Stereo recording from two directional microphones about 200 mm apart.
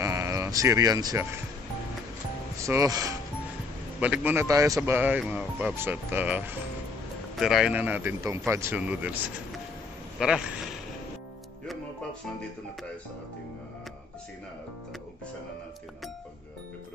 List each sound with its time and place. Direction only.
0.0 s a sound: 15° right (ahead or behind)
2.5 s speech: 15° right (ahead or behind)
11.6 s music: centre (ahead or behind)